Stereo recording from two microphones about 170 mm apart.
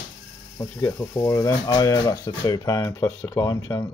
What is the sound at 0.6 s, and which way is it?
Speech, 15° left (ahead or behind).